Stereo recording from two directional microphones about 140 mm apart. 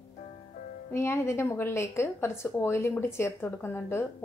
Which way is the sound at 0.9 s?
20° left (ahead or behind).